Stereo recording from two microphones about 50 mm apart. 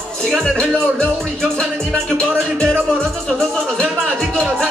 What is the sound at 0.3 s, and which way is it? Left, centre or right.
Speech, centre.